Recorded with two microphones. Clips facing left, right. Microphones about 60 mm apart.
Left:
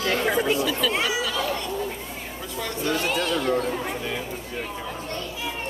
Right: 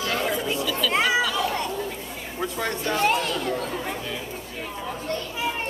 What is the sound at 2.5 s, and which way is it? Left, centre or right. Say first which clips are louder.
Speech: even; right.